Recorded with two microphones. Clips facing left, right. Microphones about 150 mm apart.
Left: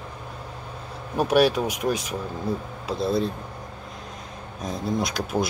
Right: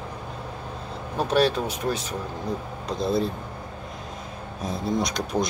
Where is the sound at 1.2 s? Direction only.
10° left (ahead or behind).